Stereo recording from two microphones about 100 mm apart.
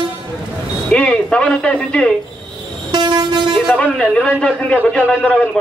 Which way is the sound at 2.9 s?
45° right (ahead or behind).